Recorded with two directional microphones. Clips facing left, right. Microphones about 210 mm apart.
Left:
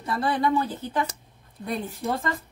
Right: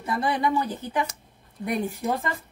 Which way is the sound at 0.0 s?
15° right (ahead or behind).